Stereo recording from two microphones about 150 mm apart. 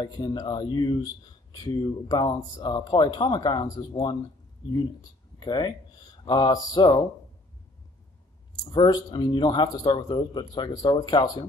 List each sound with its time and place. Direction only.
0.0 s speech: 30° left (ahead or behind)
8.6 s speech: 30° left (ahead or behind)